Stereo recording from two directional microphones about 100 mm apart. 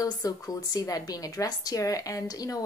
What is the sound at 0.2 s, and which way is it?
A woman's voice, 35° left (ahead or behind).